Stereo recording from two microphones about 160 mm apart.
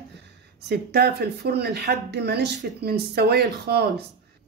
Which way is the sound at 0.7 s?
85° right.